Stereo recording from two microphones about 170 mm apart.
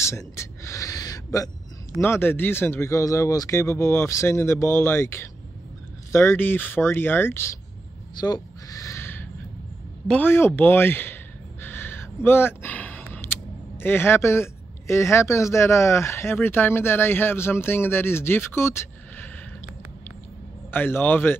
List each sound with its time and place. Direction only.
0.4 s gasp: 20° left (ahead or behind)
2.0 s speech: 15° left (ahead or behind)
8.2 s a sound: 20° left (ahead or behind)
10.0 s speech: 10° left (ahead or behind)
11.6 s a sound: 10° left (ahead or behind)
13.7 s speech: 15° left (ahead or behind)
20.7 s speech: 10° left (ahead or behind)